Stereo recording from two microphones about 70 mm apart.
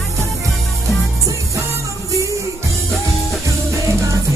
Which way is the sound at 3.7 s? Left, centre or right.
Right.